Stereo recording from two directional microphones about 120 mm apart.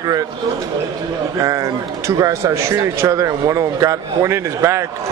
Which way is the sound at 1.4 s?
25° right (ahead or behind).